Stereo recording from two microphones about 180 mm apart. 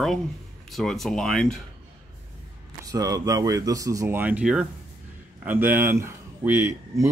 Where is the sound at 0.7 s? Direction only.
Centre (ahead or behind).